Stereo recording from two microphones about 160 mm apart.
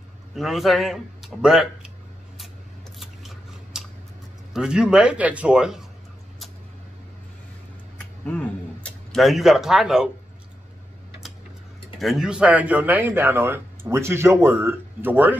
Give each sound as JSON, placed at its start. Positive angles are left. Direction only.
{"t": 0.4, "sound": "a man's voice", "side_deg": 0}
{"t": 4.6, "sound": "a man's voice", "side_deg": -5}
{"t": 8.0, "sound": "speech", "side_deg": 10}
{"t": 12.0, "sound": "speech", "side_deg": 0}